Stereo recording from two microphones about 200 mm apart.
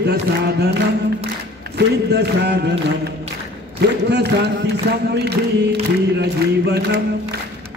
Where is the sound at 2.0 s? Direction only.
55° right (ahead or behind).